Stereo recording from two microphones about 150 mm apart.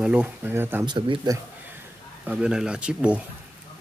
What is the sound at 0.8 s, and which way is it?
Speech, 35° right (ahead or behind).